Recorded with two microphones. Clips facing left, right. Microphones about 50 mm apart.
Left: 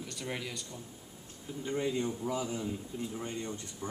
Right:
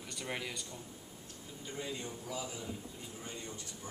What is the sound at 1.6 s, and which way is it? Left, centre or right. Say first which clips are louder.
A man's voice: left 9 dB; left.